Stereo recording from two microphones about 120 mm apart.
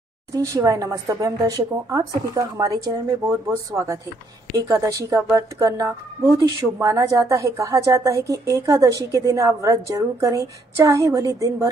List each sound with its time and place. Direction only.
0.3 s speech: 30° right (ahead or behind)